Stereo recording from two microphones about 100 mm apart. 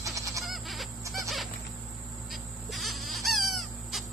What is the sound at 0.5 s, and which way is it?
Goat, centre (ahead or behind).